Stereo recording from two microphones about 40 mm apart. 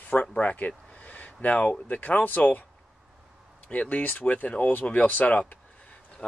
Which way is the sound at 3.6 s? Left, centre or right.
Left.